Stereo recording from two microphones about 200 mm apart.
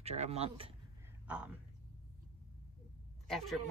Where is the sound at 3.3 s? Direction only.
Centre (ahead or behind).